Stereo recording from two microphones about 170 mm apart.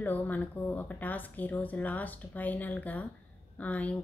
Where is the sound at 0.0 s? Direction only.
10° left (ahead or behind).